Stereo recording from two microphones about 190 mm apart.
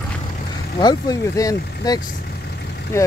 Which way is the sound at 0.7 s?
20° left (ahead or behind).